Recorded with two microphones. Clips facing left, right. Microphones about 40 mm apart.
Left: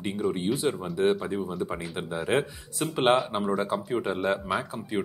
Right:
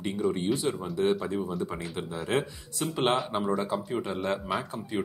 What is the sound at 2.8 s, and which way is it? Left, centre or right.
Speech, centre.